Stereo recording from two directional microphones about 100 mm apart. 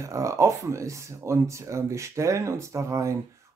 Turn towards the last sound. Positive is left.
turn(degrees=-30)  # may be behind; listen again after turning